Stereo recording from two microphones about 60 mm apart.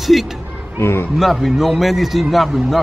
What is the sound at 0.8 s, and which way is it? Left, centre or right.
Speech, left.